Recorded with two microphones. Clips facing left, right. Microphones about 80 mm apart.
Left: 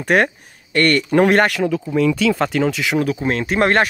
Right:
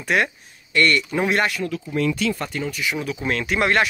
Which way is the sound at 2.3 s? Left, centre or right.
Left.